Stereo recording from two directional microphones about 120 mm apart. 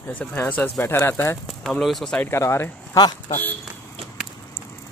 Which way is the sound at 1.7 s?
5° left (ahead or behind).